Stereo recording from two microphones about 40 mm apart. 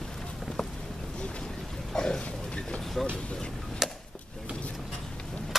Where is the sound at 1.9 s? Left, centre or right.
Centre.